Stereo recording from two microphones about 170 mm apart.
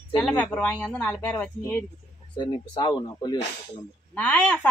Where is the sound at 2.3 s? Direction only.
30° left (ahead or behind).